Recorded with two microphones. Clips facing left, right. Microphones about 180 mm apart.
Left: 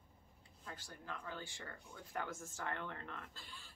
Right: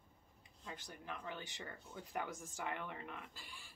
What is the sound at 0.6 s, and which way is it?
A woman's voice, 15° right (ahead or behind).